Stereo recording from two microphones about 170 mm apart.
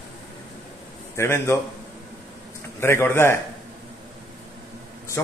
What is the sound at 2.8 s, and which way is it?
Speech, 15° left (ahead or behind).